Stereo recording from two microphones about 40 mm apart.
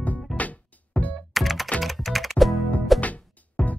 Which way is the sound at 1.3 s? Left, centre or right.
Centre.